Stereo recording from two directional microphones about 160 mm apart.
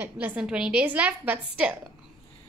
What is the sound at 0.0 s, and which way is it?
A woman's voice, 10° right (ahead or behind).